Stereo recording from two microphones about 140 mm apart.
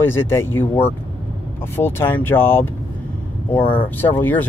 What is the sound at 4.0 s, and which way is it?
Speech, 15° left (ahead or behind).